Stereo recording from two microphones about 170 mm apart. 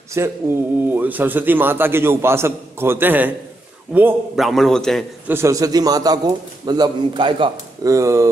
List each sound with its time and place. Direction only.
0.2 s a man's voice: 15° right (ahead or behind)
4.5 s a man's voice: centre (ahead or behind)
5.3 s a man's voice: 15° right (ahead or behind)
7.9 s a man's voice: 15° right (ahead or behind)